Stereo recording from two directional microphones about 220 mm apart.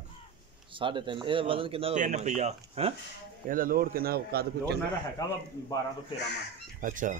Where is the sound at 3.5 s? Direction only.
40° right (ahead or behind).